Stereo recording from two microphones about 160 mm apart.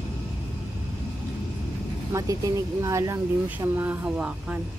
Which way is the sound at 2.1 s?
15° right (ahead or behind).